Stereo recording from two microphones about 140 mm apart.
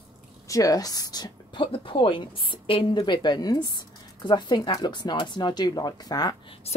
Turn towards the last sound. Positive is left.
turn(degrees=30)  # may be behind; listen again after turning